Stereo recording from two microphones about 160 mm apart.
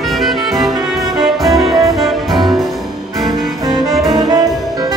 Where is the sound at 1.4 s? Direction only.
20° right (ahead or behind).